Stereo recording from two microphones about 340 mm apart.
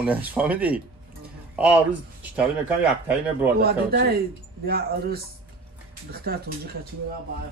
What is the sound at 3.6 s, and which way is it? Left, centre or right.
A man's voice, right.